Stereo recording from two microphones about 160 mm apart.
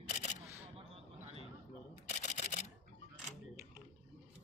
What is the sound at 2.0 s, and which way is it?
Camera, 50° left (ahead or behind).